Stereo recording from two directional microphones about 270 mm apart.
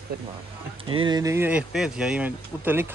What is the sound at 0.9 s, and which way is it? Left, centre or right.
A man's voice, centre.